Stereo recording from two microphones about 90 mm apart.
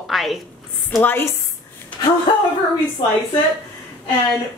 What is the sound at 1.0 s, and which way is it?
Speech, 25° left (ahead or behind).